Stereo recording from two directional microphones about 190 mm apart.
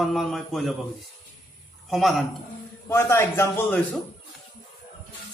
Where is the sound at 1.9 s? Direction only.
Centre (ahead or behind).